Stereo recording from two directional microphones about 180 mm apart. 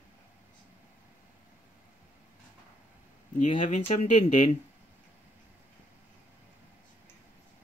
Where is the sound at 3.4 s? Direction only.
45° left (ahead or behind).